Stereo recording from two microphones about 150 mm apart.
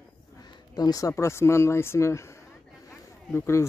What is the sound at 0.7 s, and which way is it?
Speech, 25° left (ahead or behind).